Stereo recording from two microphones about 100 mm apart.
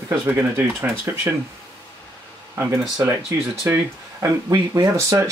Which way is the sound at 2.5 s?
25° right (ahead or behind).